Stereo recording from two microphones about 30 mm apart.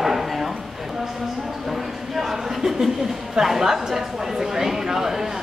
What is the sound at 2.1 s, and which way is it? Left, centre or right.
Speech, centre.